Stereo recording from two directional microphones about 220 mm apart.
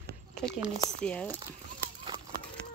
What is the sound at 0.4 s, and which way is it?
Speech, centre (ahead or behind).